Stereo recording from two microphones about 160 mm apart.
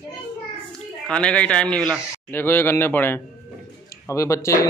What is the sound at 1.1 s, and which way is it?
A man's voice, 5° left (ahead or behind).